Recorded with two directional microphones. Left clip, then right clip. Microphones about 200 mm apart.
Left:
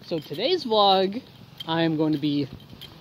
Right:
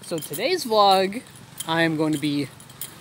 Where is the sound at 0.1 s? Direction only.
10° left (ahead or behind).